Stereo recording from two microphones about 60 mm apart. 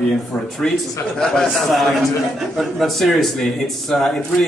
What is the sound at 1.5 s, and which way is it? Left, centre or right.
A man's voice, centre.